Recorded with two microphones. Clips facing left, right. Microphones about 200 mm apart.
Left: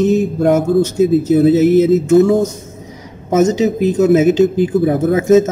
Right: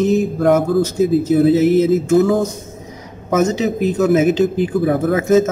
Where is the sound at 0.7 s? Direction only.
25° left (ahead or behind).